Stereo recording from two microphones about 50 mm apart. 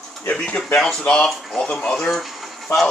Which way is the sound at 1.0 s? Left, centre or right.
Centre.